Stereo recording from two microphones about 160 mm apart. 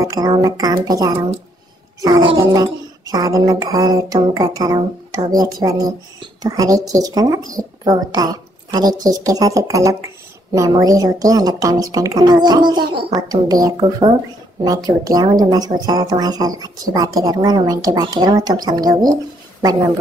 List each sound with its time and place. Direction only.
0.0 s a woman's voice: 20° right (ahead or behind)